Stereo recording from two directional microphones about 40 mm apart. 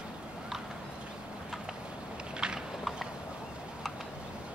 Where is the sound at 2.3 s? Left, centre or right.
Centre.